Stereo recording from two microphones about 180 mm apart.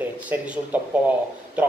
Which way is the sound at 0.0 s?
10° right (ahead or behind).